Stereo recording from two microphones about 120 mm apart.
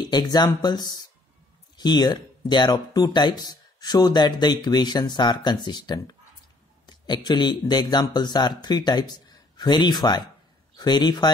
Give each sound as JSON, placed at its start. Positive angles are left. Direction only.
{"t": 0.0, "sound": "speech", "side_deg": 35}